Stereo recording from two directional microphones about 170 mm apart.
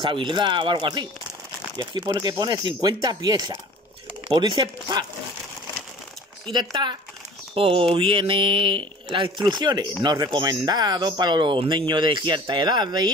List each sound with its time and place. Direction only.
0.0 s speech: 30° right (ahead or behind)
6.5 s speech: 25° right (ahead or behind)